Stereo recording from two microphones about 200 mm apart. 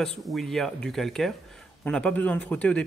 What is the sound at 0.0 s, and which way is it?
A man's voice, centre (ahead or behind).